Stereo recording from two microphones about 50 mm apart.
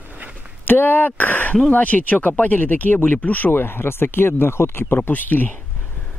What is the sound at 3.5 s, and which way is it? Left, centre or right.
Speech, left.